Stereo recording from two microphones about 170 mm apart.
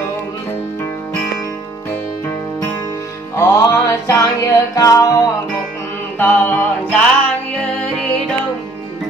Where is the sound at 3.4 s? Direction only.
15° left (ahead or behind).